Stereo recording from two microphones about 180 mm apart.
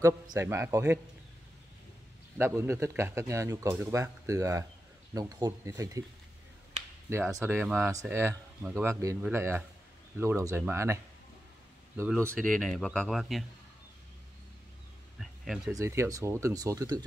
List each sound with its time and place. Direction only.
0.0 s speech: 15° right (ahead or behind)
2.3 s speech: 10° right (ahead or behind)
7.1 s speech: 15° right (ahead or behind)
12.4 s speech: centre (ahead or behind)
15.1 s a sound: centre (ahead or behind)
15.7 s speech: 15° right (ahead or behind)